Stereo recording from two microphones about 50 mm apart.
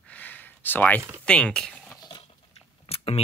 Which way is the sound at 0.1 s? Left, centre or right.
Left.